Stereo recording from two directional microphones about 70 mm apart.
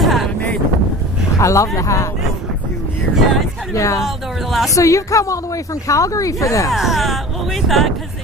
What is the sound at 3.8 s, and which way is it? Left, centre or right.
Speech, left.